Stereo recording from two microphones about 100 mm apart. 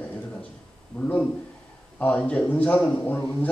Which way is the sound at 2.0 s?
15° left (ahead or behind).